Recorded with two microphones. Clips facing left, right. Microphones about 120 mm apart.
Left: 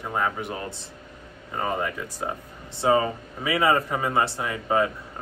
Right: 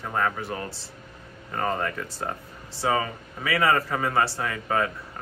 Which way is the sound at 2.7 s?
25° left (ahead or behind).